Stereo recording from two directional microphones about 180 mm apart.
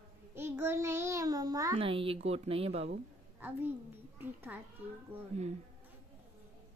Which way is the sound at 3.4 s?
10° right (ahead or behind).